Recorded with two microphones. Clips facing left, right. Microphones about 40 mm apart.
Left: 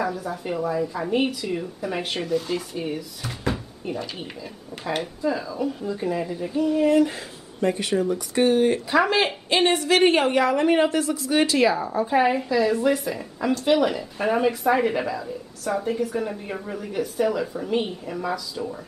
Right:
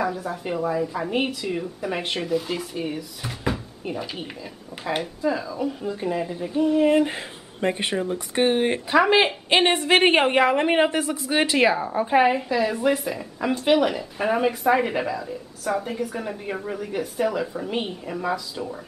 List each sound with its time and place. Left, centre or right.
0.0 s speech: centre
6.5 s a woman's voice: centre
12.3 s speech: centre